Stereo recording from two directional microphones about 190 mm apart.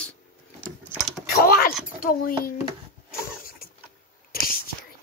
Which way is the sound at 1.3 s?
55° left (ahead or behind).